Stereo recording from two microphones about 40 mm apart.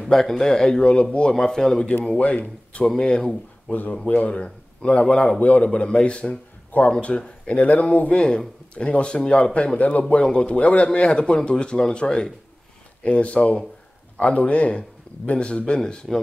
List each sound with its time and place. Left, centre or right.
0.1 s speech: centre
1.8 s speech: left
4.1 s speech: left
13.0 s speech: left